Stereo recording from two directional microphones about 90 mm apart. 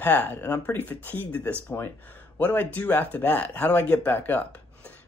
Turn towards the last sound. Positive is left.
turn(degrees=20)  # may be behind; listen again after turning